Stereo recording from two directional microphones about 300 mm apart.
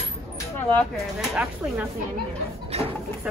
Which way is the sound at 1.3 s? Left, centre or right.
Centre.